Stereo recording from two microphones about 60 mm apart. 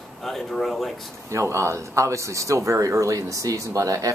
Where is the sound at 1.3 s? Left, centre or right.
Right.